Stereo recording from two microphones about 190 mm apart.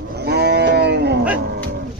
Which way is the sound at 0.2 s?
60° right (ahead or behind).